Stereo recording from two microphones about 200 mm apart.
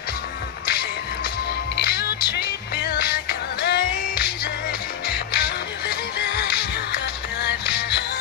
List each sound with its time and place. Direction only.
1.8 s music: 55° left (ahead or behind)